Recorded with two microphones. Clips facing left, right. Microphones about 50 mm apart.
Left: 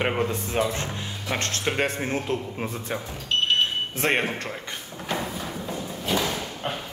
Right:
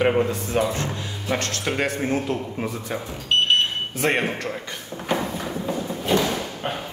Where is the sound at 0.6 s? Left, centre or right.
Centre.